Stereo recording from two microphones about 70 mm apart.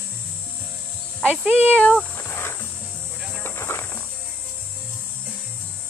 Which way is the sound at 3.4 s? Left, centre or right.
Left.